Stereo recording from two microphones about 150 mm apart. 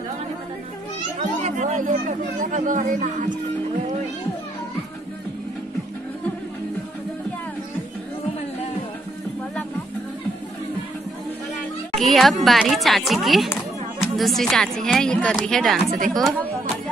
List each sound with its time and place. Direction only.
1.4 s speech: 55° right (ahead or behind)
11.9 s speech: centre (ahead or behind)